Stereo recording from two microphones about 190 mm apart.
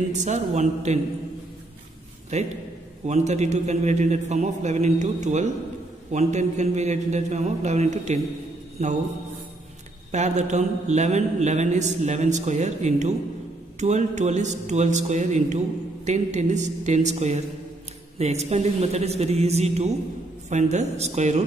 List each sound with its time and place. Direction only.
0.1 s a man's voice: 40° right (ahead or behind)
2.3 s a man's voice: 35° right (ahead or behind)
10.1 s a man's voice: 40° right (ahead or behind)